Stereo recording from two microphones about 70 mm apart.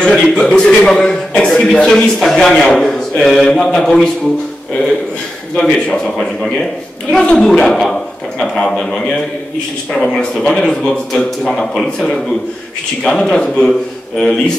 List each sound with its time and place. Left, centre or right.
0.1 s a man's voice: centre
5.6 s a man's voice: centre